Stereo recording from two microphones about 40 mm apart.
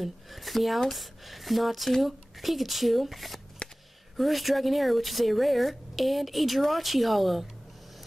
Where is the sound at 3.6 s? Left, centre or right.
Left.